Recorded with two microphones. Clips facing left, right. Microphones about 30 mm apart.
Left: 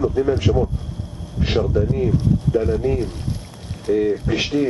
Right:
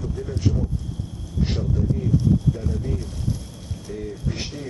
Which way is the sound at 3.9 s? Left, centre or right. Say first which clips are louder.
Left 13 dB; left.